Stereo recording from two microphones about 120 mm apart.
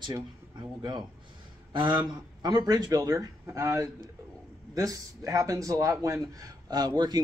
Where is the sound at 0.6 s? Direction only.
40° right (ahead or behind).